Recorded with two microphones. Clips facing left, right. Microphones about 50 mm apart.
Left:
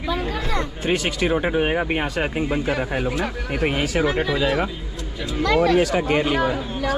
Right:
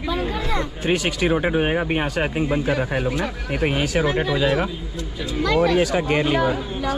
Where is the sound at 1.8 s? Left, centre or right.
Centre.